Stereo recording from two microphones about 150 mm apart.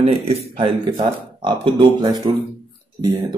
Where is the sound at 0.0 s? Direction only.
40° right (ahead or behind).